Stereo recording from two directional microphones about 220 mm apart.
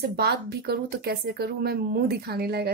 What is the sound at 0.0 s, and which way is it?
Speech, 45° right (ahead or behind).